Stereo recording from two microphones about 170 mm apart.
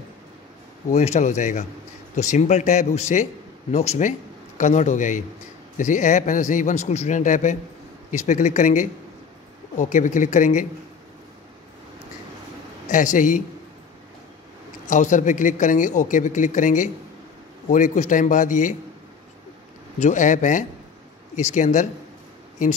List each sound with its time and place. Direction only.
0.8 s a man's voice: 40° left (ahead or behind)
12.8 s a man's voice: 45° left (ahead or behind)
14.9 s a man's voice: 45° left (ahead or behind)
20.0 s a man's voice: 45° left (ahead or behind)